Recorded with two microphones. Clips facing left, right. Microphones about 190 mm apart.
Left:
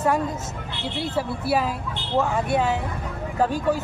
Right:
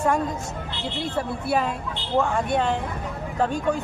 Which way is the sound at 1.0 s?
5° left (ahead or behind).